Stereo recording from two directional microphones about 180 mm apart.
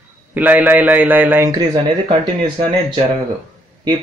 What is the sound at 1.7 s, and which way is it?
Speech, 25° right (ahead or behind).